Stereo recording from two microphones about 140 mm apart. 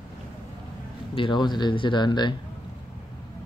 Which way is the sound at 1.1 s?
35° left (ahead or behind).